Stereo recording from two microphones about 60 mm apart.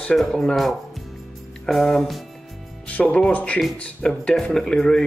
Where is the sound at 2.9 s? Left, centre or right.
Left.